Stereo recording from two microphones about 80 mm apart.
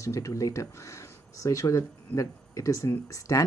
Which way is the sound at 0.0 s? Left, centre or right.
Left.